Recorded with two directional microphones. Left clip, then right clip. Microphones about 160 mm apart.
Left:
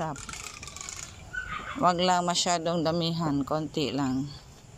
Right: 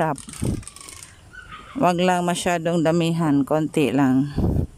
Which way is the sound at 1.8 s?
45° right (ahead or behind).